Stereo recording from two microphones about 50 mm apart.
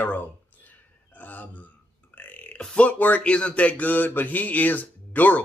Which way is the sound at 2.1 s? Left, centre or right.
Left.